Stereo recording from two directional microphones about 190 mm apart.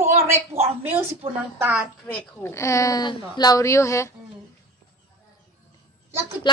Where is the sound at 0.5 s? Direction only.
30° right (ahead or behind).